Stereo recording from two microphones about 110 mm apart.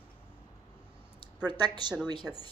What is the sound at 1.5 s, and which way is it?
Speech, 40° right (ahead or behind).